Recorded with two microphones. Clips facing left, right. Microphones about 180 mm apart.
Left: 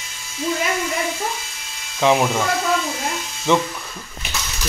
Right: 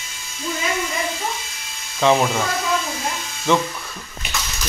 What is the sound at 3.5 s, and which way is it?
Speech, 15° left (ahead or behind).